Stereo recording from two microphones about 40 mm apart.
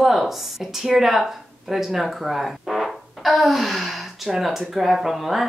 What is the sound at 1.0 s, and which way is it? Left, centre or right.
Speech, centre.